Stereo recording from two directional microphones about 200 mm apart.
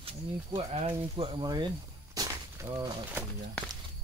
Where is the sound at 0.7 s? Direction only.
25° right (ahead or behind).